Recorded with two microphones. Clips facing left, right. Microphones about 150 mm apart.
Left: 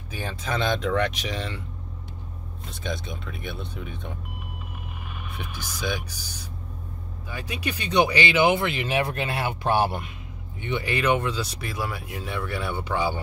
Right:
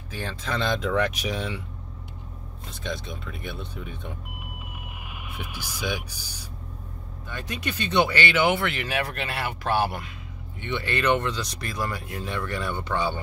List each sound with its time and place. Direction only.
0.1 s speech: 5° left (ahead or behind)
2.8 s speech: centre (ahead or behind)
5.3 s speech: 10° right (ahead or behind)
7.2 s speech: 10° left (ahead or behind)